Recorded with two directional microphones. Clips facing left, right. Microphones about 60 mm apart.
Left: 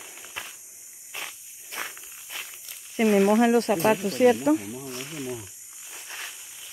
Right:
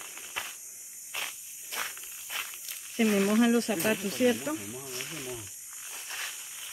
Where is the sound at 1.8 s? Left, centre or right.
Left.